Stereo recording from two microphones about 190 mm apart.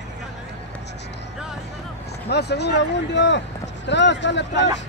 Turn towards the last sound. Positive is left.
turn(degrees=70)  # may be behind; listen again after turning